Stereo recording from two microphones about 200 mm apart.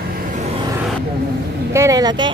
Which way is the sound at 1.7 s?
15° right (ahead or behind).